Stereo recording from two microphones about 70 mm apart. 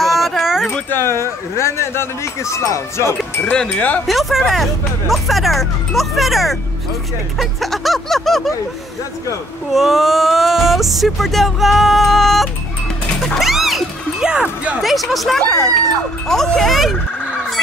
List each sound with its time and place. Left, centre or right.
0.0 s a sound: centre
0.8 s speech: left
3.7 s speech: left
4.1 s speech: centre
9.7 s speech: centre
13.3 s music: centre
14.3 s music: centre
14.8 s speech: centre